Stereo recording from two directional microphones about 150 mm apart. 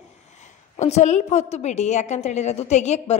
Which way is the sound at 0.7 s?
50° left (ahead or behind).